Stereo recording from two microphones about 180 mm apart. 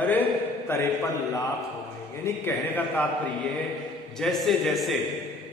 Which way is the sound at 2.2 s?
10° left (ahead or behind).